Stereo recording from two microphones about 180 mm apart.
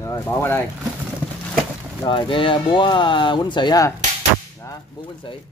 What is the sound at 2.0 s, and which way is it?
Speech, 25° left (ahead or behind).